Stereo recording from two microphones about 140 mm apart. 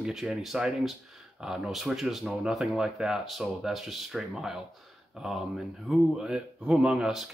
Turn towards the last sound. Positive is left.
turn(degrees=-5)  # may be behind; listen again after turning